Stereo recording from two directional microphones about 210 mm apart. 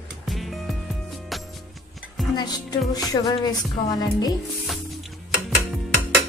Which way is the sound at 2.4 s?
20° left (ahead or behind).